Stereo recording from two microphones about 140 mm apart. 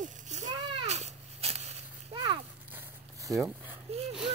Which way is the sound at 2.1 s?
35° right (ahead or behind).